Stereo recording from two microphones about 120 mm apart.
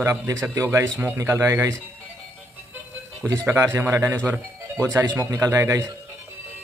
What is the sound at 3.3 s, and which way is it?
Speech, 20° right (ahead or behind).